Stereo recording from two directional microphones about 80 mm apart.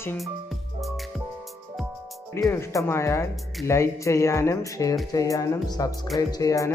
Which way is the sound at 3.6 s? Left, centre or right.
Left.